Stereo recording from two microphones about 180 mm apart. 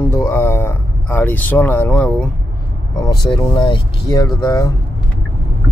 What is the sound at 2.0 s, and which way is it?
Speech, 10° left (ahead or behind).